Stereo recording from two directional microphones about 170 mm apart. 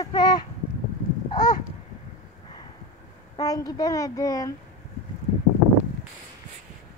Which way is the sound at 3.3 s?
20° left (ahead or behind).